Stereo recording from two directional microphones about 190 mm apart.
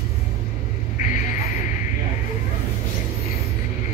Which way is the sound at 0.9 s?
45° left (ahead or behind).